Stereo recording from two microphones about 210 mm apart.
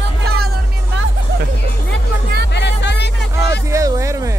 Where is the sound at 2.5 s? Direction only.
55° left (ahead or behind).